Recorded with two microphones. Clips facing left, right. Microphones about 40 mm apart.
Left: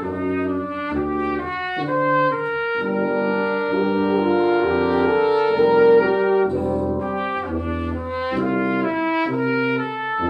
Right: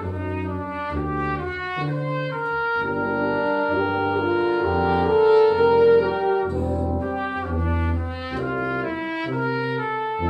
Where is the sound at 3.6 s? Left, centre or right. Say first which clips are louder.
Left 2 dB; left.